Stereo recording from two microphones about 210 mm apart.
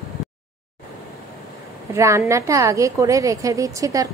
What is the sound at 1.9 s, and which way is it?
A woman's voice, 15° right (ahead or behind).